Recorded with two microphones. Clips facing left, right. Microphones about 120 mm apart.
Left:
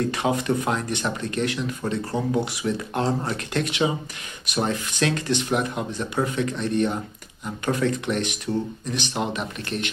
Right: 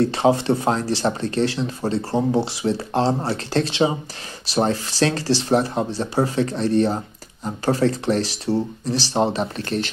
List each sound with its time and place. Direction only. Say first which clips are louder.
0.0 s speech: right 6 dB; 30° right (ahead or behind)